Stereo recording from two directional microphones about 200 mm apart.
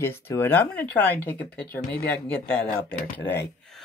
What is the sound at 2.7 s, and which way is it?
Speech, 45° left (ahead or behind).